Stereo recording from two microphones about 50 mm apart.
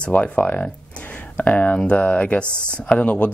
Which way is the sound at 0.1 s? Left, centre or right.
Left.